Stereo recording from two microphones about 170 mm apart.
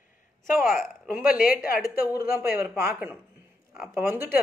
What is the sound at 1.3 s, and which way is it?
Speech, 55° left (ahead or behind).